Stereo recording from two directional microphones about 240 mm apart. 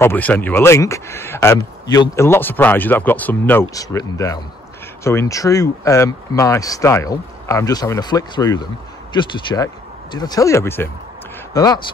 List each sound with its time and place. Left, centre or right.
0.0 s speech: centre